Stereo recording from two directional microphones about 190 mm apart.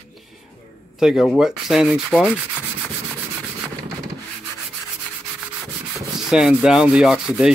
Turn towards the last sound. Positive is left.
turn(degrees=-5)  # may be behind; listen again after turning